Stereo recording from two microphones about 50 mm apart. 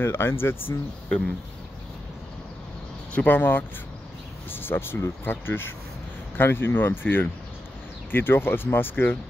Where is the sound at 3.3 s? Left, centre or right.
Left.